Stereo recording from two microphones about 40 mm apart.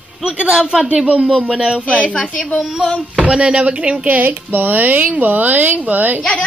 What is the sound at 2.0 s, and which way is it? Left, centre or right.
Speech, left.